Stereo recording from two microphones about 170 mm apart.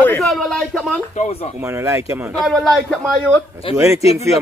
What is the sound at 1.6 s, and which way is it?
Speech, 15° right (ahead or behind).